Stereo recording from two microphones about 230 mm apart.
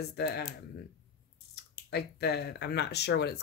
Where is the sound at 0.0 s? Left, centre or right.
Left.